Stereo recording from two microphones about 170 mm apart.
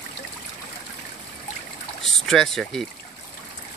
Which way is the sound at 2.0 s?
Centre (ahead or behind).